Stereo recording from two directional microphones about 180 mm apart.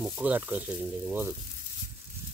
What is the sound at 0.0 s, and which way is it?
Frying, 5° right (ahead or behind).